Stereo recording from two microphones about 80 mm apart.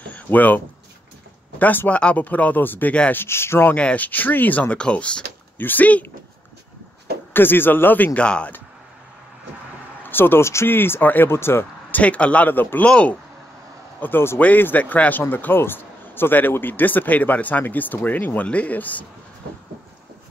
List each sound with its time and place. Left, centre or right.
0.1 s a sound: left
1.6 s speech: left
3.2 s speech: left
3.7 s speech: centre
7.3 s speech: left
10.0 s speech: left
12.0 s speech: centre